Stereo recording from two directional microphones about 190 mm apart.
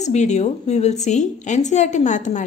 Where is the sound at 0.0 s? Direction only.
35° left (ahead or behind).